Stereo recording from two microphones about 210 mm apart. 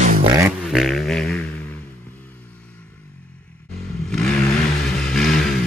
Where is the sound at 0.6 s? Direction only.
Centre (ahead or behind).